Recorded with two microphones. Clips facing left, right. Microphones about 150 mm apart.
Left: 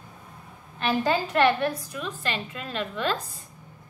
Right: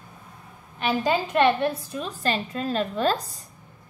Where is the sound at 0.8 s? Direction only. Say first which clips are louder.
Right 1 dB; 15° right (ahead or behind); by 3.5 s 40° right (ahead or behind).